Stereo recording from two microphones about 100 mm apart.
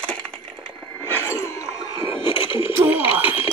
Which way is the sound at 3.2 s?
70° left (ahead or behind).